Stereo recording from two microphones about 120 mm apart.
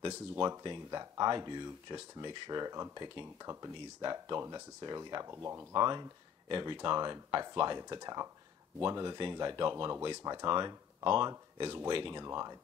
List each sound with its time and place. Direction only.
0.0 s speech: 35° right (ahead or behind)
6.5 s speech: 40° right (ahead or behind)
12.2 s speech: 25° right (ahead or behind)